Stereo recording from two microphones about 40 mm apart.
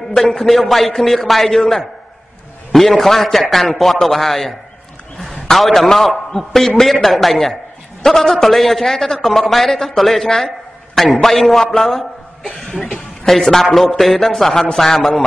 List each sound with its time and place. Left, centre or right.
0.2 s a man's voice: centre
12.4 s cough: left
13.2 s a man's voice: centre